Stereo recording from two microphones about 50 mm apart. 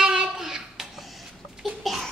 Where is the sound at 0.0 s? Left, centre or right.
Centre.